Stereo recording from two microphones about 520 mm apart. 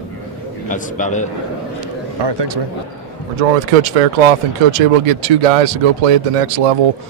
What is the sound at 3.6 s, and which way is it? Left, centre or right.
Speech, right.